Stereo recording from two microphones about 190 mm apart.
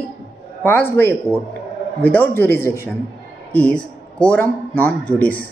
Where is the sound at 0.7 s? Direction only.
10° left (ahead or behind).